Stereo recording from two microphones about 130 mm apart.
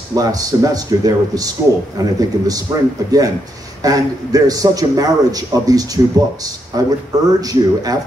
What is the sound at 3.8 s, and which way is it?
A man's voice, 30° right (ahead or behind).